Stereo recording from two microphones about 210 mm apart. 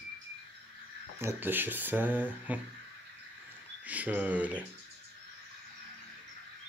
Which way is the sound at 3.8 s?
5° right (ahead or behind).